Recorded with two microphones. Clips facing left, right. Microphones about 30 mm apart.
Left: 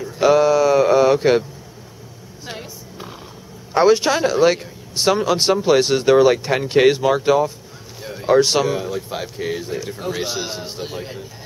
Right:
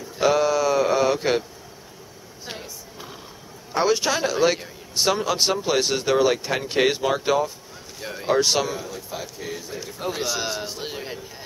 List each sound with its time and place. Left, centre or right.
0.2 s a sound: centre
2.5 s a sound: centre
3.7 s speech: centre
4.2 s speech: centre
8.0 s speech: centre
8.4 s speech: centre
8.7 s speech: left
10.0 s speech: centre
10.5 s a man's voice: centre
10.8 s speech: centre